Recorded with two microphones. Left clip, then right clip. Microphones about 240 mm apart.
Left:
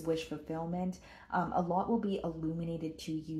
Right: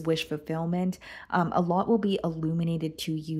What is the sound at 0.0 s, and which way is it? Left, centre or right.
Speech, right.